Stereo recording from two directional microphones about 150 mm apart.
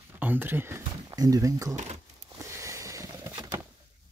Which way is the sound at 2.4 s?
20° right (ahead or behind).